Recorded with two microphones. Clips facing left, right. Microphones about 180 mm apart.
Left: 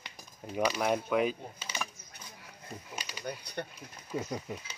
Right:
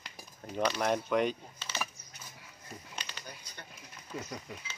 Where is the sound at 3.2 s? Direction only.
65° left (ahead or behind).